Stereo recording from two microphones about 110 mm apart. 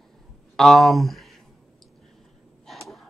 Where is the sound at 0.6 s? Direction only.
Centre (ahead or behind).